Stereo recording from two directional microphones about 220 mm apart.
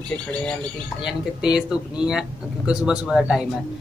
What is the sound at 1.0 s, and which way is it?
Speech, 5° right (ahead or behind).